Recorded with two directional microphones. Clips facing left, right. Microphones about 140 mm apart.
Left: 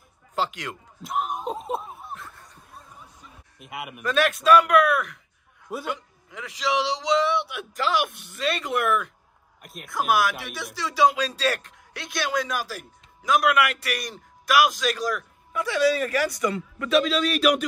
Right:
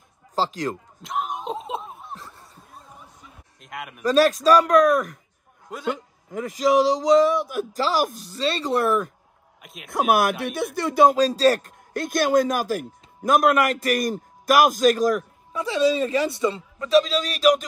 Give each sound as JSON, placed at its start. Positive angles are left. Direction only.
{"t": 0.4, "sound": "speech", "side_deg": -40}
{"t": 1.0, "sound": "a sound", "side_deg": 0}
{"t": 2.1, "sound": "snicker", "side_deg": -35}
{"t": 3.6, "sound": "speech", "side_deg": 5}
{"t": 4.0, "sound": "speech", "side_deg": -35}
{"t": 9.6, "sound": "a man's voice", "side_deg": 0}
{"t": 9.8, "sound": "a man's voice", "side_deg": -55}
{"t": 15.5, "sound": "speech", "side_deg": -30}